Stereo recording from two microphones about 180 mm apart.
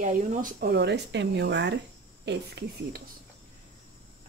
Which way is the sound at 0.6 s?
70° right (ahead or behind).